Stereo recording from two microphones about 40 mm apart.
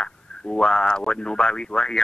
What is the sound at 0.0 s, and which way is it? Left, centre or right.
Speech, left.